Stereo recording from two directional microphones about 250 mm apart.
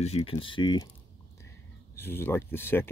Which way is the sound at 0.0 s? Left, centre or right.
Left.